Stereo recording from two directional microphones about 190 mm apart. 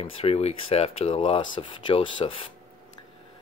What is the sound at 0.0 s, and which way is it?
Speech, 30° left (ahead or behind).